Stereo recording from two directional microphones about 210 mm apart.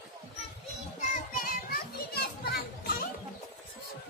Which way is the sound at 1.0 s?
45° left (ahead or behind).